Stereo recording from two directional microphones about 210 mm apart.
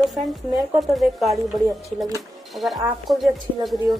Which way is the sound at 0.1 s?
Centre (ahead or behind).